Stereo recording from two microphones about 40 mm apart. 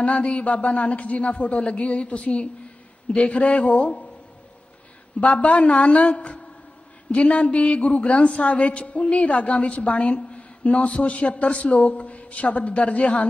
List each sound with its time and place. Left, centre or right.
0.0 s a woman's voice: left
5.4 s a man's voice: left